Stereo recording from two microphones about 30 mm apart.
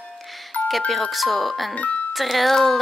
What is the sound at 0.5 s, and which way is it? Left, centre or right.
Music, left.